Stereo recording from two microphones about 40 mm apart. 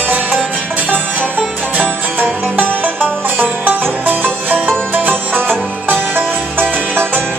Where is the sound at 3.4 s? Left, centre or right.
Right.